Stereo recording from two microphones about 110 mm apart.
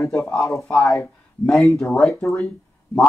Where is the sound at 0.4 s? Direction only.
25° left (ahead or behind).